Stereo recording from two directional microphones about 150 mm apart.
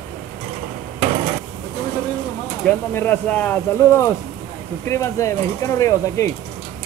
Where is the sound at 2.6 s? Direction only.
10° left (ahead or behind).